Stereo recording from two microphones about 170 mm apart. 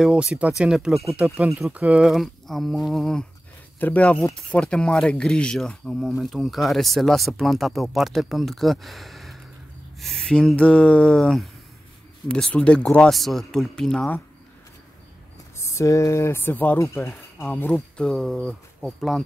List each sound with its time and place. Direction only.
0.0 s speech: 5° right (ahead or behind)
15.5 s speech: 15° left (ahead or behind); by 19.2 s centre (ahead or behind)